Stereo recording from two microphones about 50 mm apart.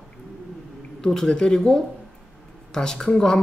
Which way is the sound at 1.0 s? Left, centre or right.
Centre.